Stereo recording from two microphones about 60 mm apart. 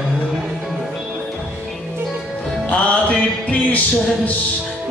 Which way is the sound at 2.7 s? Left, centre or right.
Left.